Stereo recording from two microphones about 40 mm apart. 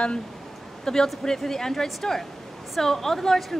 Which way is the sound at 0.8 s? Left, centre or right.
Centre.